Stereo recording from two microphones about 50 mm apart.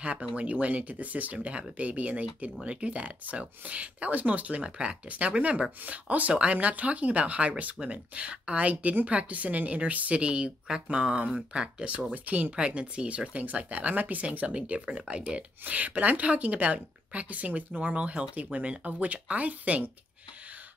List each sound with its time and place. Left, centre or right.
0.0 s a woman's voice: right
12.1 s speech: right
12.6 s a woman's voice: right